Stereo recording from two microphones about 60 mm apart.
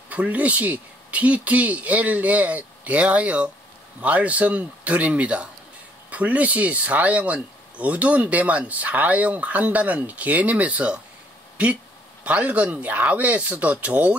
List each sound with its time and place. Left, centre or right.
0.1 s speech: right
12.3 s speech: right